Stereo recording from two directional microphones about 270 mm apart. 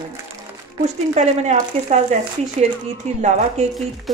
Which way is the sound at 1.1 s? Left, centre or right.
Right.